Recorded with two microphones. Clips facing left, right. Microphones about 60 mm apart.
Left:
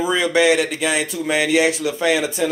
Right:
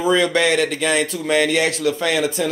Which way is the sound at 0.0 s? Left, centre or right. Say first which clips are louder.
Even; centre.